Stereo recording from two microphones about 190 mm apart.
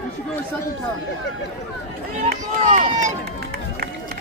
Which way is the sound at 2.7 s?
40° right (ahead or behind).